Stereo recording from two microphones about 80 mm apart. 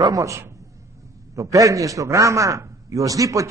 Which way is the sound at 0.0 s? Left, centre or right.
Right.